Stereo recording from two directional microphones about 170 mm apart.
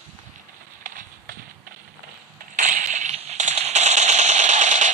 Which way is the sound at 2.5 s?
45° right (ahead or behind).